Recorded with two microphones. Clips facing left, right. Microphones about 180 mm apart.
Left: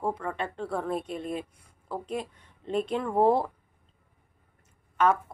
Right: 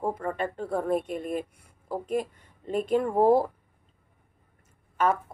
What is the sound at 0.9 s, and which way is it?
Speech, 50° right (ahead or behind).